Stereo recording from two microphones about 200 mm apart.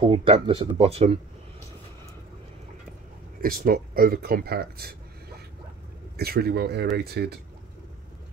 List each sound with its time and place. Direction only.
0.0 s speech: 25° right (ahead or behind)
3.3 s speech: 45° right (ahead or behind)
6.1 s speech: 50° right (ahead or behind)